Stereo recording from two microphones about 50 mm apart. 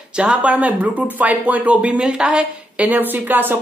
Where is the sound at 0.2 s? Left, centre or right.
Right.